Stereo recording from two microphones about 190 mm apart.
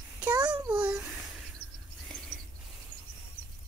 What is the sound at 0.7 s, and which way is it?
Babbling, 5° right (ahead or behind).